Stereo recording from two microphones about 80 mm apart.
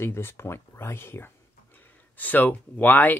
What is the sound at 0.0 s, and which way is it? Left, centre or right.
Speech, left.